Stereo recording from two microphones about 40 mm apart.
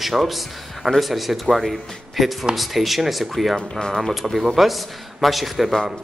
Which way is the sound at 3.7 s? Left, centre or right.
Centre.